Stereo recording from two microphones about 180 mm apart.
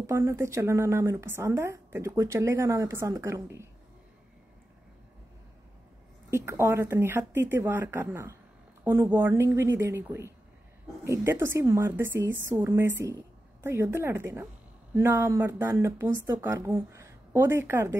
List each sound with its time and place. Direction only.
0.0 s a woman's voice: 15° right (ahead or behind)
6.3 s a woman's voice: 15° right (ahead or behind)